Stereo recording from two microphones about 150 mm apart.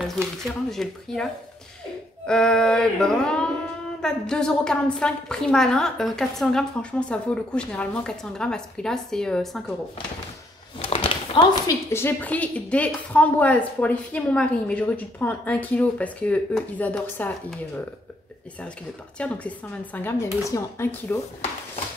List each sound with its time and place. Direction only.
0.4 s a woman's voice: 5° left (ahead or behind)
10.8 s a sound: 35° left (ahead or behind)
11.9 s a woman's voice: 15° left (ahead or behind)
19.1 s a woman's voice: 10° left (ahead or behind)